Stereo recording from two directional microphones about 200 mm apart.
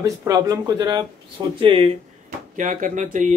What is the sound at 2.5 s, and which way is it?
Speech, 40° right (ahead or behind).